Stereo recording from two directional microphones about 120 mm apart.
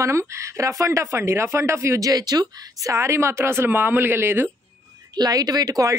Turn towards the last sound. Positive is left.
turn(degrees=-30)  # may be behind; listen again after turning